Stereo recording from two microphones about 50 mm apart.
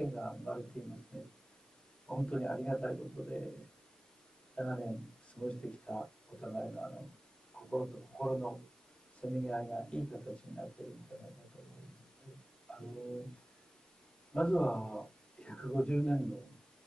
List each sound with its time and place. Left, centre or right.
0.0 s speech: centre
1.1 s a sound: centre
2.0 s speech: centre
4.6 s speech: centre
12.7 s music: centre
14.3 s speech: centre